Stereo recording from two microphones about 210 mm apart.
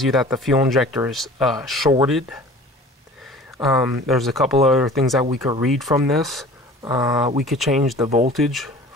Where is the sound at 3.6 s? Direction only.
Centre (ahead or behind).